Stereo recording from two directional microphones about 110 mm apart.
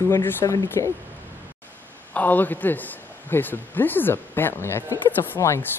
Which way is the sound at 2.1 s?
15° left (ahead or behind).